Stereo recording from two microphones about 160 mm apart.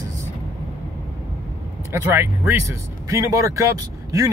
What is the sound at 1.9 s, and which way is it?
Speech, 15° right (ahead or behind).